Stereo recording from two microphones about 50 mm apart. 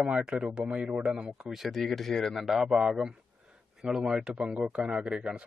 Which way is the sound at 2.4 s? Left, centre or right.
Centre.